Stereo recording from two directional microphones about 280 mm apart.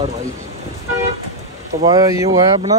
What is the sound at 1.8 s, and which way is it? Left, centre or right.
Speech, centre.